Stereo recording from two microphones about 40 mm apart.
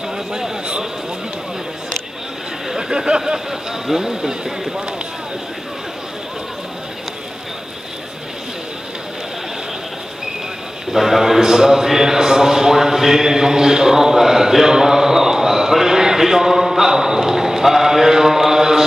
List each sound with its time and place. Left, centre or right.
0.3 s a sound: centre
2.7 s speech: centre
10.9 s a man's voice: centre